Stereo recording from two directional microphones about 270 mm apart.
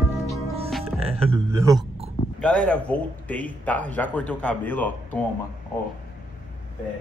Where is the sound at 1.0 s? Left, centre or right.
Centre.